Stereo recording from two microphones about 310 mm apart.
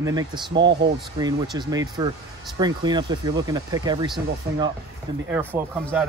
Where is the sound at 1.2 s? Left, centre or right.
Centre.